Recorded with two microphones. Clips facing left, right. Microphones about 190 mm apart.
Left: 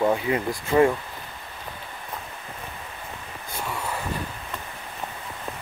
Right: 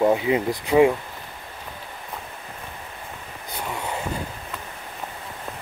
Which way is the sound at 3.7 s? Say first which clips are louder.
Right 2 dB; 20° right (ahead or behind).